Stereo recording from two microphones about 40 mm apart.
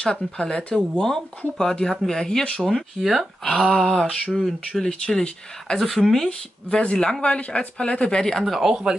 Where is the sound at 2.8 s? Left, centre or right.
Centre.